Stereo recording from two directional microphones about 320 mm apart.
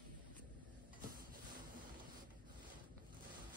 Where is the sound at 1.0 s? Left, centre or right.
Right.